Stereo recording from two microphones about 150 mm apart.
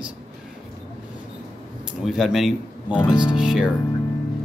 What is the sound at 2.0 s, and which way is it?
A man's voice, centre (ahead or behind).